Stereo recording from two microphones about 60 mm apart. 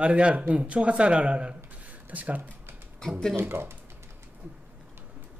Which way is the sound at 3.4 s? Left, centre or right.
Right.